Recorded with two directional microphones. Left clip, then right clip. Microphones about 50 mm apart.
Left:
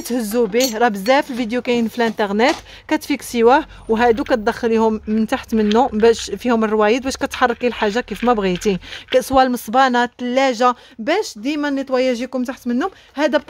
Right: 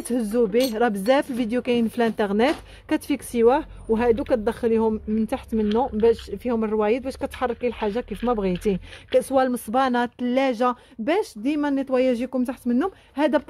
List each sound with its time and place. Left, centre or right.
0.1 s speech: centre
3.4 s speech: left
4.8 s speech: left
5.6 s speech: left
8.5 s speech: left
9.7 s speech: left
10.3 s speech: centre
11.1 s speech: centre
13.1 s speech: centre